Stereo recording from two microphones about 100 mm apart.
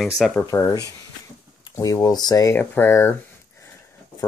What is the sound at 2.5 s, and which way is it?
Speech, 20° left (ahead or behind).